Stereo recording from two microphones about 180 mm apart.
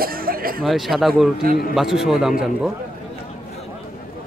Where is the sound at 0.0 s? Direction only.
55° right (ahead or behind).